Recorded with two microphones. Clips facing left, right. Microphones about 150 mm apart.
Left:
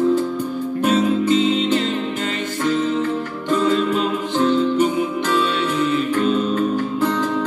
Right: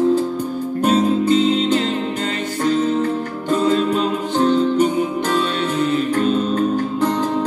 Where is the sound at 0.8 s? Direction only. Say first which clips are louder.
Right 1 dB; 40° right (ahead or behind).